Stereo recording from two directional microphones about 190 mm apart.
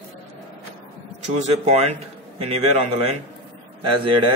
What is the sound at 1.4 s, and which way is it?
A man's voice, 35° right (ahead or behind).